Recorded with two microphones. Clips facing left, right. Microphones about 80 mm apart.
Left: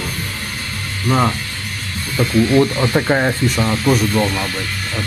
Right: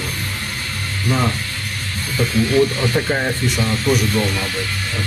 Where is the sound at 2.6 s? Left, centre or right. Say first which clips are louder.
Left 2 dB; left.